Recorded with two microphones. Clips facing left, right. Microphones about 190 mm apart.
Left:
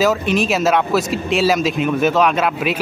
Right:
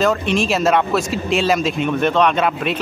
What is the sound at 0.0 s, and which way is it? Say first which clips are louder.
A man's voice: left 1 dB; centre (ahead or behind).